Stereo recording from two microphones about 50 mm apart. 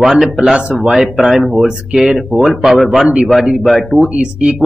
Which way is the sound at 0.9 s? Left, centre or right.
Centre.